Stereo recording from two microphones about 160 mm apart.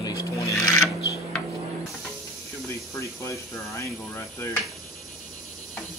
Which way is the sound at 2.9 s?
20° left (ahead or behind).